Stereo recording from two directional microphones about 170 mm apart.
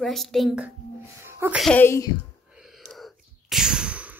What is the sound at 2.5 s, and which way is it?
Whispering, centre (ahead or behind).